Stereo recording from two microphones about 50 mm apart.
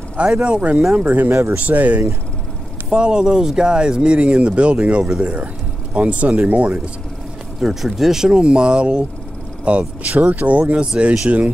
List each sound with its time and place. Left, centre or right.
0.4 s speech: right
0.9 s speech: right
2.9 s speech: centre; by 6.8 s right
7.6 s speech: centre
8.3 s speech: centre